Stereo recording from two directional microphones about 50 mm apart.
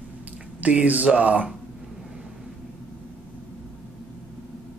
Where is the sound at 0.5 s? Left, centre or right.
Right.